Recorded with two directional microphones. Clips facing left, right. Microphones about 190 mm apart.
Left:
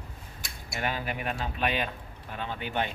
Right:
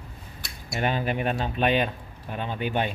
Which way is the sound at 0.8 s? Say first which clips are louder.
Right 6 dB; 25° right (ahead or behind).